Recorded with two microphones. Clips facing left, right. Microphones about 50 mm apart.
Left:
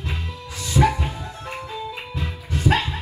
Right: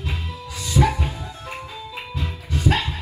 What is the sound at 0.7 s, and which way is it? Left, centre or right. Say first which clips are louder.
Music: left 1 dB; left.